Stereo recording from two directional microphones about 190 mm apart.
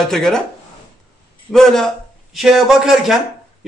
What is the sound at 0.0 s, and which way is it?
Speech, 5° left (ahead or behind).